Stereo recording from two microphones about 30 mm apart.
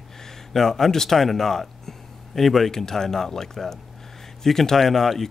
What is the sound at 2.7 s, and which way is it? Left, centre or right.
A man's voice, centre.